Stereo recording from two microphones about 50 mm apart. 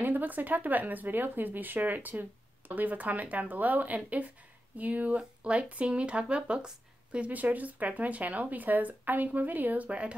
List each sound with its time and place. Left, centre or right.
0.0 s speech: right; by 7.2 s centre
7.2 s speech: right
9.8 s speech: right